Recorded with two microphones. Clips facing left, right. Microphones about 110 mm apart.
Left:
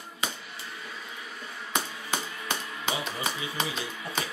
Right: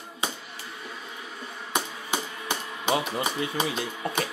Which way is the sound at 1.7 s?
15° right (ahead or behind).